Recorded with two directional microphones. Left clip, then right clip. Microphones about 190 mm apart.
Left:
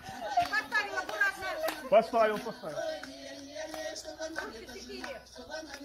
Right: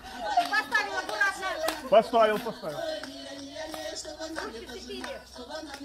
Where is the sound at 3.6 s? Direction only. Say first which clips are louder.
Right 2 dB; 35° left (ahead or behind).